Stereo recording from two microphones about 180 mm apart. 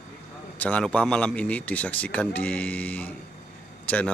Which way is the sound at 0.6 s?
5° left (ahead or behind).